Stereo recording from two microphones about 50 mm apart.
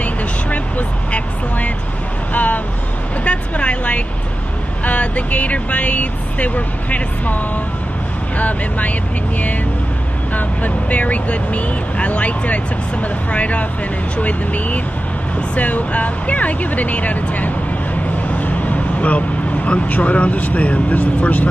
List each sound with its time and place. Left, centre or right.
0.0 s vehicle: left
3.3 s a sound: left
4.8 s speech: left
10.3 s speech: left